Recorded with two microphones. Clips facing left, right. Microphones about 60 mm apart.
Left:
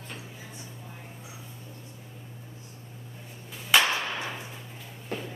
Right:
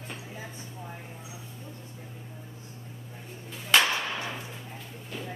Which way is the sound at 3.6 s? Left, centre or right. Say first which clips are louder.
Even; centre.